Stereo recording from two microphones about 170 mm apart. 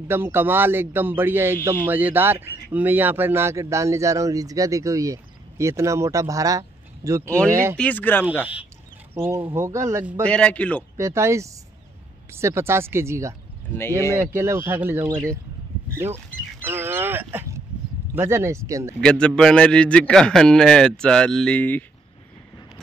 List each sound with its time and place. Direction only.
0.1 s a man's voice: 15° right (ahead or behind)
7.7 s speech: 10° left (ahead or behind)
9.1 s a man's voice: 15° right (ahead or behind)
10.2 s speech: 5° left (ahead or behind)
11.0 s a man's voice: 15° right (ahead or behind)
16.6 s a man's voice: 15° right (ahead or behind)
18.9 s a man's voice: 5° left (ahead or behind)